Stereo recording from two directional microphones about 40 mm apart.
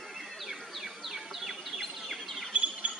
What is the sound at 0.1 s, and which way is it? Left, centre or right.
Bird, centre.